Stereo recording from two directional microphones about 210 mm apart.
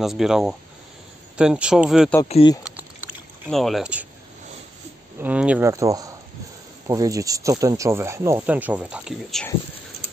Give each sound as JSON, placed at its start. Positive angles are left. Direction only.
{"t": 0.0, "sound": "speech", "side_deg": 0}
{"t": 2.2, "sound": "speech", "side_deg": 30}
{"t": 2.6, "sound": "a sound", "side_deg": -5}
{"t": 5.2, "sound": "speech", "side_deg": -5}